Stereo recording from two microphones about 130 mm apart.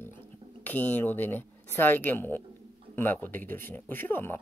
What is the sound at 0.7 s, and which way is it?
Speech, 15° left (ahead or behind).